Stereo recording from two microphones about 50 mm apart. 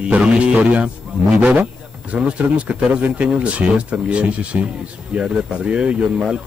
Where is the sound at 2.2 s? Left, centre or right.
Right.